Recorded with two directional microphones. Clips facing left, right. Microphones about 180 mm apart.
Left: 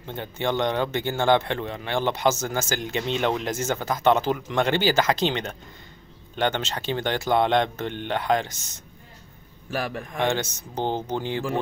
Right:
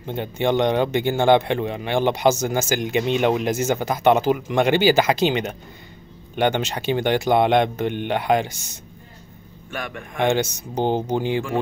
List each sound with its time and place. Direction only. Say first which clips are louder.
0.0 s a man's voice: right 5 dB; 15° right (ahead or behind)
9.7 s speech: left 3 dB; 35° left (ahead or behind)
10.1 s a man's voice: right 6 dB; 15° right (ahead or behind)